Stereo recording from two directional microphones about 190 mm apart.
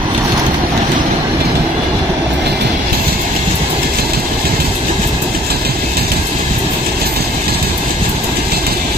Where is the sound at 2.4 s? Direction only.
60° right (ahead or behind).